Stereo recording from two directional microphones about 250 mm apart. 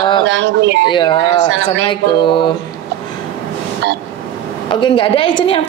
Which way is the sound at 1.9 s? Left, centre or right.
Centre.